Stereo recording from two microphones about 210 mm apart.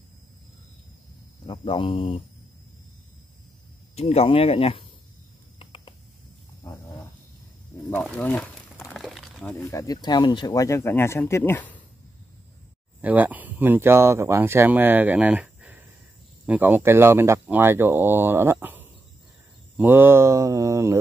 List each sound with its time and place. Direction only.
1.4 s speech: 25° left (ahead or behind)
3.9 s speech: 30° left (ahead or behind)
5.6 s mouse: 25° left (ahead or behind)
7.9 s crumpling: 5° left (ahead or behind)
9.6 s speech: 15° left (ahead or behind)
13.0 s speech: 10° right (ahead or behind)